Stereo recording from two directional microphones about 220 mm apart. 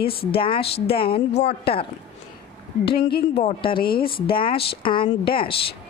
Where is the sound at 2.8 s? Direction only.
45° left (ahead or behind).